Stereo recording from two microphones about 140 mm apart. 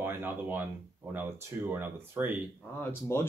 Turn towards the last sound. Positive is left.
turn(degrees=15)  # may be behind; listen again after turning